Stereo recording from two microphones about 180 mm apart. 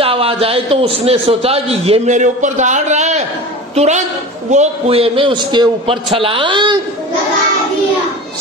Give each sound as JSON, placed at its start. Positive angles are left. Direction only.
{"t": 0.0, "sound": "a man's voice", "side_deg": -30}